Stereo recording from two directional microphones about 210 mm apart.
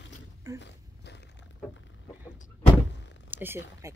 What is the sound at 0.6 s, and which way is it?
Dog, 55° left (ahead or behind).